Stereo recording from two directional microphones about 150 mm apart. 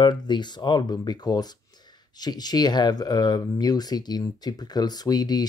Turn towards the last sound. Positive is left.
turn(degrees=25)  # may be behind; listen again after turning